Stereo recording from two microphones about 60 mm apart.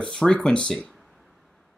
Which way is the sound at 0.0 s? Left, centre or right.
Centre.